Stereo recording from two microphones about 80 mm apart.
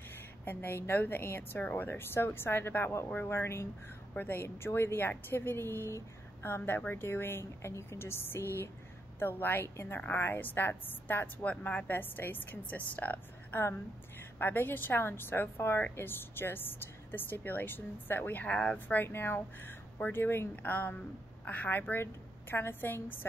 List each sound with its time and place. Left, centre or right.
0.1 s a woman's voice: left
19.0 s a woman's voice: left